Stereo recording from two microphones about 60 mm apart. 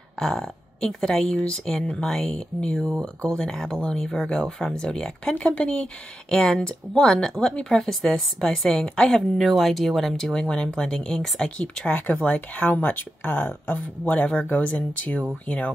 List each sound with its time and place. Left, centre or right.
0.2 s speech: centre
10.5 s speech: centre
12.3 s speech: left